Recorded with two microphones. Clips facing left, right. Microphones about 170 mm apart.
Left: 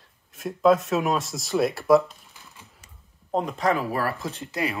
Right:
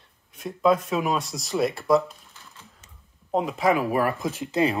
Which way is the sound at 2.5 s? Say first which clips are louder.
Even; 10° left (ahead or behind).